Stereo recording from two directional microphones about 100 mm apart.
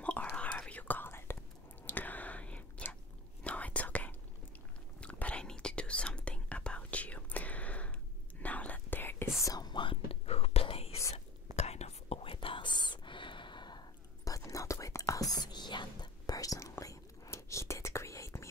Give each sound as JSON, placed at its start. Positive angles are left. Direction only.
{"t": 0.0, "sound": "whispering", "side_deg": 15}
{"t": 9.4, "sound": "whispering", "side_deg": 40}
{"t": 10.2, "sound": "whispering", "side_deg": 90}